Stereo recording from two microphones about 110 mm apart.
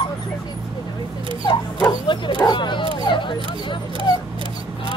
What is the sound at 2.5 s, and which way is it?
Dog, 45° left (ahead or behind).